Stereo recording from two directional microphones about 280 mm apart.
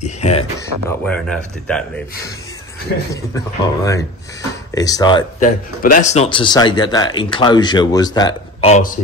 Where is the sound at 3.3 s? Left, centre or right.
Centre.